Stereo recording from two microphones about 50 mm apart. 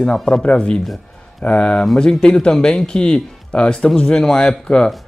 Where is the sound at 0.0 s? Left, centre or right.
Centre.